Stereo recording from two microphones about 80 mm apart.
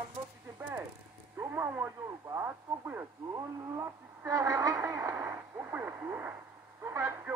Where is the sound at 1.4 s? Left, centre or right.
Right.